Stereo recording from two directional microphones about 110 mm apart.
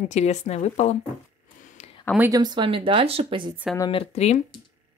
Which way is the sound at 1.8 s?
80° left.